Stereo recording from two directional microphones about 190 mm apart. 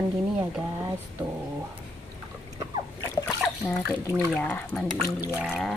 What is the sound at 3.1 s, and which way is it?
Splash, 15° left (ahead or behind).